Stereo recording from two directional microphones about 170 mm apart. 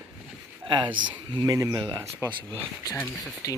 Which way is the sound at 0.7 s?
30° right (ahead or behind).